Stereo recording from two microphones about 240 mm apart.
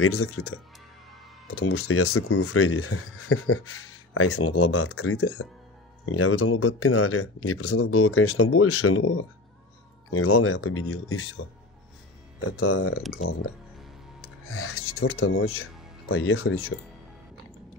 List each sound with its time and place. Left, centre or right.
0.0 s speech: left
1.6 s speech: left
12.5 s speech: left
14.5 s speech: left